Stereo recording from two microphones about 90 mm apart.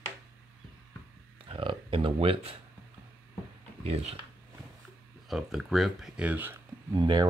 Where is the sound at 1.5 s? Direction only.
70° right (ahead or behind); by 2.5 s 90° right.